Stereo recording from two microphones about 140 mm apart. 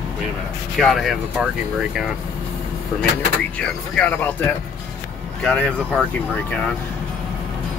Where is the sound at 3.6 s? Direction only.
5° left (ahead or behind).